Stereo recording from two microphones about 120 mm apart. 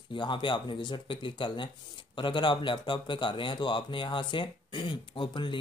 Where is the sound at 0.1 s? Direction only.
45° left (ahead or behind).